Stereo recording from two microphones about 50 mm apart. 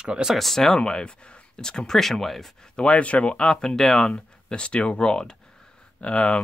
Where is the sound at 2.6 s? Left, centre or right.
Centre.